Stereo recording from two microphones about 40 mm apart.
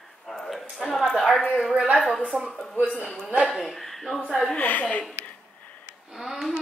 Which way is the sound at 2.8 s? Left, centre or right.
Right.